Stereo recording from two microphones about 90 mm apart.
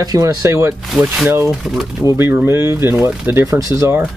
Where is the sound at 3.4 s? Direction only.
35° right (ahead or behind).